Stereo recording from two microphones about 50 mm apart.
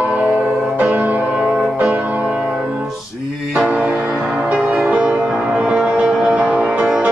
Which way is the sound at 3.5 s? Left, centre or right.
Centre.